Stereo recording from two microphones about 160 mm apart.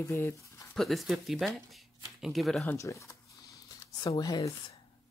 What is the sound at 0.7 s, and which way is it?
Speech, centre (ahead or behind).